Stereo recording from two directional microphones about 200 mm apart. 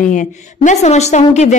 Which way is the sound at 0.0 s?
40° left (ahead or behind).